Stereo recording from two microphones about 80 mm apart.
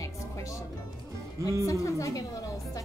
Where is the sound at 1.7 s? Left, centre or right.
Left.